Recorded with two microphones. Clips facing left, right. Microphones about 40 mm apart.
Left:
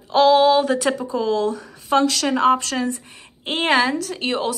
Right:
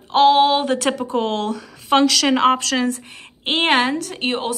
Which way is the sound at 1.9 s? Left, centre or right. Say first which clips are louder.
Right 3 dB; right.